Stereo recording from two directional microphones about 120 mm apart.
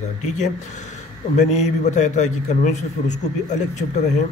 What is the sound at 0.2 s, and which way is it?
A man's voice, 80° left.